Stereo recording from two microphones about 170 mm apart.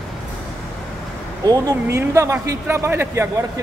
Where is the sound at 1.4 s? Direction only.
20° right (ahead or behind).